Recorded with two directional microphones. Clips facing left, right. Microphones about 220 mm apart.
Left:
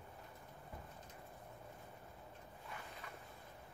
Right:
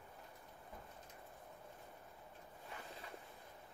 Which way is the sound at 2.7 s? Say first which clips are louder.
Even; 30° right (ahead or behind).